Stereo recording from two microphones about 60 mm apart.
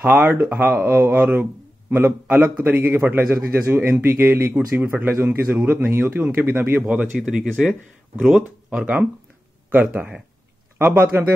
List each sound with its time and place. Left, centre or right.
0.0 s a man's voice: right
6.2 s a man's voice: right
7.2 s speech: centre
8.3 s a man's voice: centre